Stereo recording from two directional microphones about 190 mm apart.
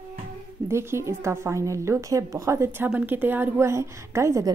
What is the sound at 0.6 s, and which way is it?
A woman's voice, 15° right (ahead or behind).